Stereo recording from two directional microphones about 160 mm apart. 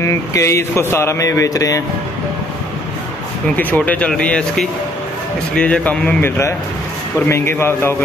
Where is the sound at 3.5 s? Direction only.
10° left (ahead or behind).